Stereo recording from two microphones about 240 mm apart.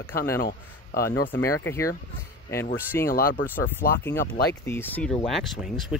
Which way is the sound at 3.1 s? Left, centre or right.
Left.